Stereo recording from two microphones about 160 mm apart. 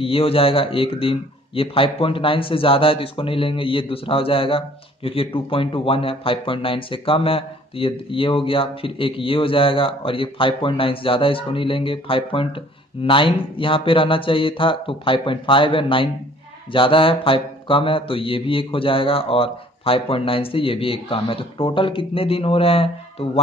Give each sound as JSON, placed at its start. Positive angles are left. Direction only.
{"t": 0.0, "sound": "speech", "side_deg": 35}